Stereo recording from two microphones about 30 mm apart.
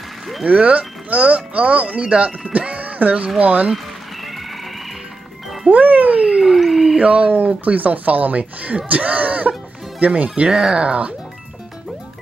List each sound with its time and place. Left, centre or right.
0.4 s speech: right
2.5 s music: right
3.3 s speech: right
5.7 s speech: right
6.1 s a sound: right
6.4 s a sound: centre
7.0 s speech: right
7.6 s speech: right
10.5 s speech: right